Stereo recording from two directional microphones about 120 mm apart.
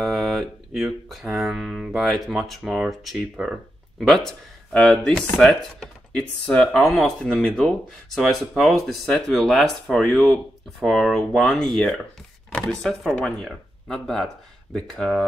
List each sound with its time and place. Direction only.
0.0 s speech: centre (ahead or behind)